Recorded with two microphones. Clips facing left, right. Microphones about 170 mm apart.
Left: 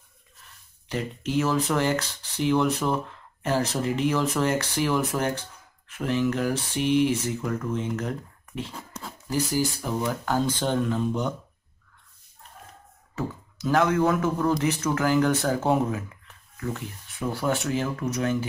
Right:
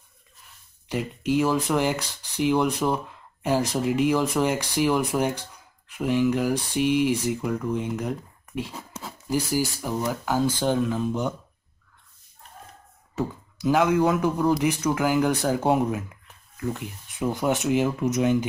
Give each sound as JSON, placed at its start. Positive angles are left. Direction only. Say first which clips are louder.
{"t": 0.8, "sound": "speech", "louder": "right 3 dB", "side_deg": -10}
{"t": 13.1, "sound": "speech", "louder": "right 3 dB", "side_deg": -10}